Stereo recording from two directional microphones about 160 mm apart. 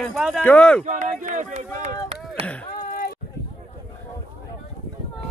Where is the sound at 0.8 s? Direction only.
50° right (ahead or behind).